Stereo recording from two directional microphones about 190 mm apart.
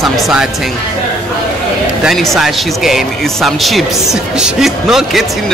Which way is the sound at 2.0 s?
Centre (ahead or behind).